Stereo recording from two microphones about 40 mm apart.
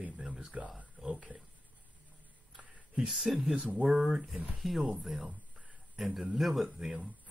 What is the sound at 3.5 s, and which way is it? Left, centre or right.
Speech, right.